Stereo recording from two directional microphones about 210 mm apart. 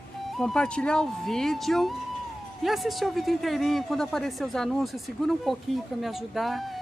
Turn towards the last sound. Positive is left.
turn(degrees=0)  # may be behind; listen again after turning